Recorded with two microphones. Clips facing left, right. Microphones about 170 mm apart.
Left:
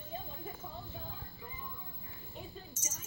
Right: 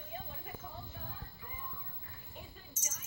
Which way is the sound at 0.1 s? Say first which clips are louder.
Left 2 dB; 30° left (ahead or behind).